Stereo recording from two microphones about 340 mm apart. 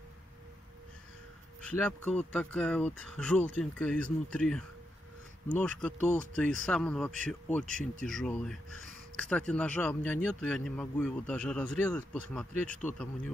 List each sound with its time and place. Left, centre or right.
1.7 s speech: centre